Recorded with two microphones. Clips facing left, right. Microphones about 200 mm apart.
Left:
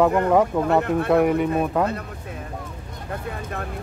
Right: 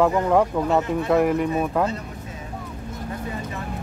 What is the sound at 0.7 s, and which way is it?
Speech, 60° left (ahead or behind).